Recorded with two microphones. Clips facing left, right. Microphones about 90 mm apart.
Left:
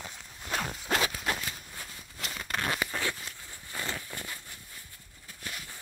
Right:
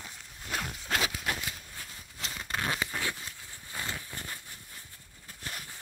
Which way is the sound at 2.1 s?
20° right (ahead or behind).